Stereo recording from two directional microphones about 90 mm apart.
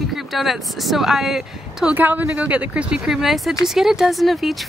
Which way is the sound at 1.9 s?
20° right (ahead or behind).